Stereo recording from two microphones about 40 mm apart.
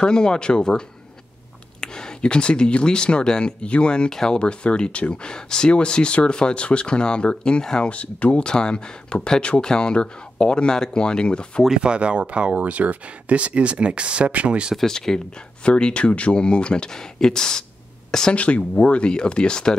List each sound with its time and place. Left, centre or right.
0.0 s speech: centre
4.1 s speech: centre
4.4 s speech: left
7.9 s speech: left
11.7 s speech: right
14.9 s speech: centre
15.6 s speech: left
18.3 s speech: left